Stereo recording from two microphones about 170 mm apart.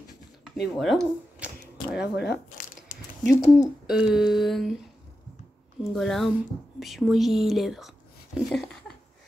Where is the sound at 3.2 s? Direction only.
50° left (ahead or behind).